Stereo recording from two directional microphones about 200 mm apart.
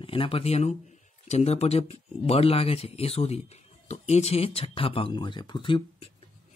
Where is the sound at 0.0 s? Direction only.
25° left (ahead or behind).